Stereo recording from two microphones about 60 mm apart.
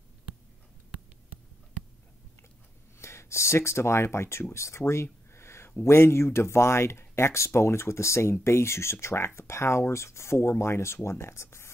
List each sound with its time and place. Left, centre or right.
3.0 s speech: left